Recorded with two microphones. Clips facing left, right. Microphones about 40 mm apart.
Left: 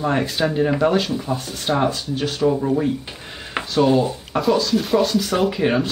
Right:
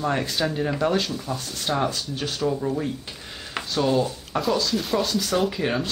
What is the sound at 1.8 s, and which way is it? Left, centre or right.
Speech, centre.